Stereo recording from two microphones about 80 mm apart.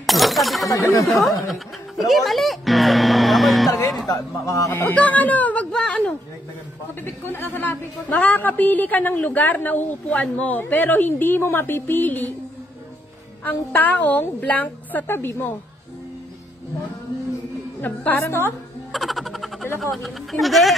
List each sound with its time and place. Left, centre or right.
0.0 s breaking: centre
0.7 s a woman's voice: left
1.1 s speech: centre
4.1 s a man's voice: left
4.9 s speech: centre
7.2 s a woman's voice: left
13.4 s a woman's voice: left
17.8 s a woman's voice: left
18.9 s music: centre
19.8 s speech: centre